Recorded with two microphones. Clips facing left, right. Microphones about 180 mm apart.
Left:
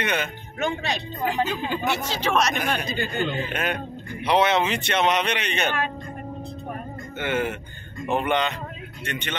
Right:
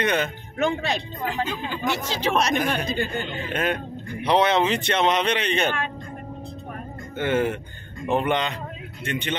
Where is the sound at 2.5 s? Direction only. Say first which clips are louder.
Right 3 dB; 30° right (ahead or behind).